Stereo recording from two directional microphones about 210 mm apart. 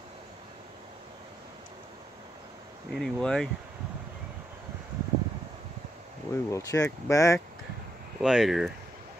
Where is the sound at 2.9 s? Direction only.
5° left (ahead or behind).